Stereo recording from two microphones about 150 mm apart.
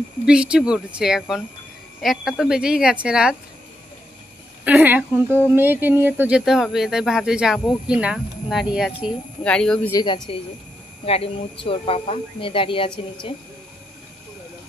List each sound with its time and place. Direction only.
0.2 s speech: 5° right (ahead or behind)
4.6 s a woman's voice: 10° right (ahead or behind); by 9.8 s 5° left (ahead or behind)
10.0 s speech: 30° left (ahead or behind)